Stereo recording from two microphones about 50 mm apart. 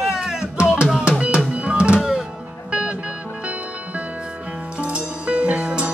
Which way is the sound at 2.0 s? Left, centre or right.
Centre.